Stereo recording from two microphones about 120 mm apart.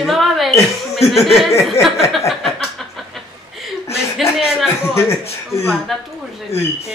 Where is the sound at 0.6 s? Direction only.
60° left (ahead or behind).